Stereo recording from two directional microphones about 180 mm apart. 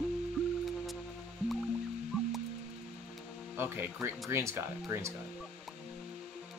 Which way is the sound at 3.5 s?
10° right (ahead or behind).